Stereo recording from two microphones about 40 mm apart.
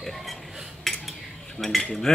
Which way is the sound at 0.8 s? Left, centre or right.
Centre.